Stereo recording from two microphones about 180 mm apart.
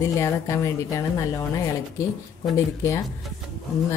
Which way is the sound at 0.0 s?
15° left (ahead or behind).